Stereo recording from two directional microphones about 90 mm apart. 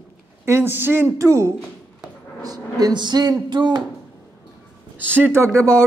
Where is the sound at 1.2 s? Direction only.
35° right (ahead or behind).